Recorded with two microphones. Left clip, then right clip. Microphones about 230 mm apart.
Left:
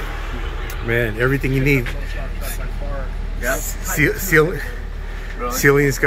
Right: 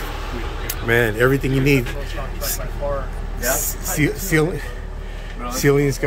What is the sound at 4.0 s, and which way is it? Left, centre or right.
Speech, centre.